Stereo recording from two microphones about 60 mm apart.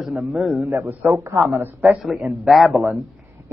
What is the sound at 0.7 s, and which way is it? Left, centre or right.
Speech, right.